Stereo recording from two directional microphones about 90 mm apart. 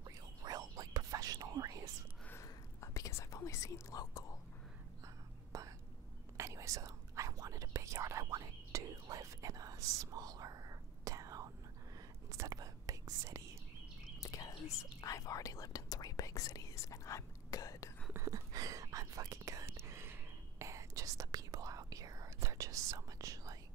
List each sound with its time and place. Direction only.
0.0 s whispering: 45° right (ahead or behind)
2.4 s whispering: 40° left (ahead or behind)
5.0 s whispering: 40° right (ahead or behind)
14.2 s whispering: 40° left (ahead or behind)
18.1 s whispering: 40° right (ahead or behind)